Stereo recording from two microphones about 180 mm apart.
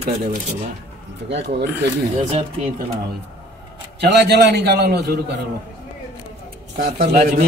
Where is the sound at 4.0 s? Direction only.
65° right (ahead or behind).